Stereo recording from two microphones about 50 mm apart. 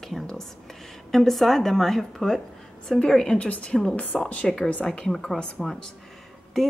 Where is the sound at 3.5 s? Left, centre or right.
Left.